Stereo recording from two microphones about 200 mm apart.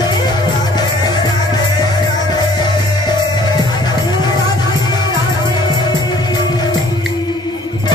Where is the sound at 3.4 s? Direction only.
20° left (ahead or behind).